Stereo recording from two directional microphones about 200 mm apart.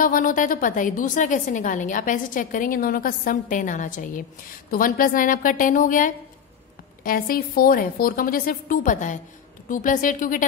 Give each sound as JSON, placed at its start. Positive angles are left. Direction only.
{"t": 0.0, "sound": "a woman's voice", "side_deg": 45}